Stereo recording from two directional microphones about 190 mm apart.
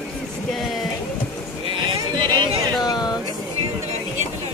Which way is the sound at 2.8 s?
20° left (ahead or behind).